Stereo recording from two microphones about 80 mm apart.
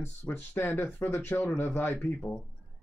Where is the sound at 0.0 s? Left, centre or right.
Left.